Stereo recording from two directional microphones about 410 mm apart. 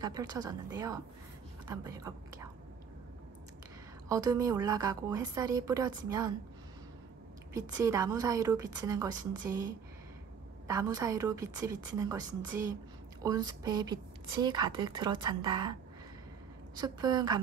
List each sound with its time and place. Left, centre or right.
0.0 s a woman's voice: centre
4.1 s a woman's voice: centre
7.5 s a woman's voice: centre
10.7 s a woman's voice: centre